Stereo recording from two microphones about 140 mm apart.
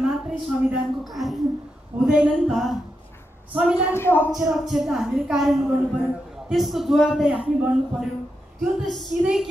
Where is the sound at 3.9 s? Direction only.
15° left (ahead or behind).